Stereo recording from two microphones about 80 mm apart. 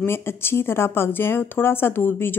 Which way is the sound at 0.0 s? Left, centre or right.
Left.